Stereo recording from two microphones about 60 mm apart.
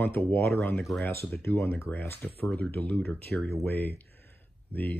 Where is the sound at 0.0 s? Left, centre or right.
Left.